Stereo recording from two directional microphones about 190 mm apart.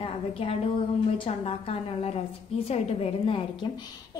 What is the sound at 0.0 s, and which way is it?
A woman's voice, 30° left (ahead or behind).